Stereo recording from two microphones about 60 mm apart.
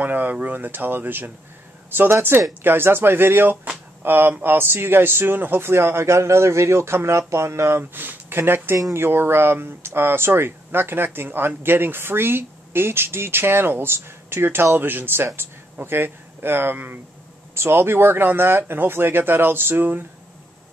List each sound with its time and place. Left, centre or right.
0.0 s a man's voice: right
7.9 s speech: right
17.6 s speech: right